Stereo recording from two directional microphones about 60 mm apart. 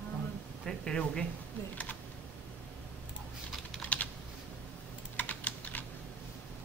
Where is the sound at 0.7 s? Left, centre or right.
Centre.